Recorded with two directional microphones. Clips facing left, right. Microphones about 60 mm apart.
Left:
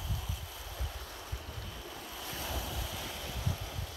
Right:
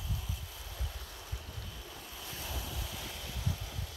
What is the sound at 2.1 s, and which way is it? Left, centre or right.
Waves, left.